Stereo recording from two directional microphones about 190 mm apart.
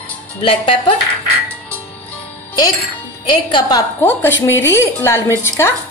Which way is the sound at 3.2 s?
25° left (ahead or behind).